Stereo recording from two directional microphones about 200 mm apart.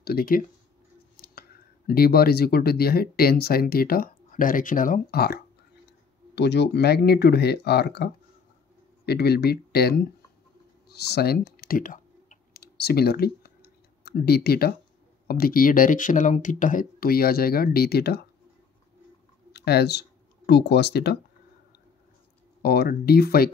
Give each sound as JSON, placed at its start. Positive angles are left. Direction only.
{"t": 0.0, "sound": "speech", "side_deg": 50}
{"t": 10.9, "sound": "computer keyboard", "side_deg": 55}
{"t": 15.2, "sound": "speech", "side_deg": 50}
{"t": 19.5, "sound": "speech", "side_deg": 55}
{"t": 22.6, "sound": "speech", "side_deg": 50}